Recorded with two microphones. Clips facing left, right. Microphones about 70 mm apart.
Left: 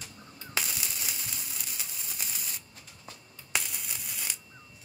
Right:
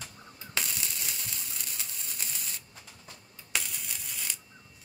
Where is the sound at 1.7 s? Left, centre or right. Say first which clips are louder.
Even; centre.